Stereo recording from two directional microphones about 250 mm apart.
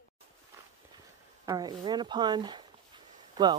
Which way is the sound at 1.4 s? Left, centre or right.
Centre.